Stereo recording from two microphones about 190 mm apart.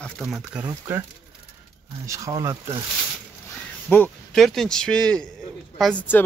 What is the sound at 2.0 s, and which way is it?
Speech, 15° right (ahead or behind).